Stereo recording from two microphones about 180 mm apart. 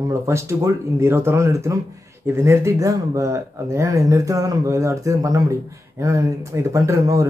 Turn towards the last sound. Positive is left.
turn(degrees=-20)  # may be behind; listen again after turning